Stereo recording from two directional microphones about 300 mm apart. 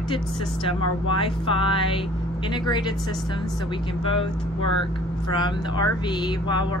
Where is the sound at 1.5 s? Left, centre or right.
Centre.